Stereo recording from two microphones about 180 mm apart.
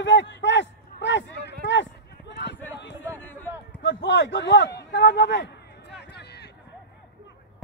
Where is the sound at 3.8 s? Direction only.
85° left; by 6.5 s 70° left (ahead or behind).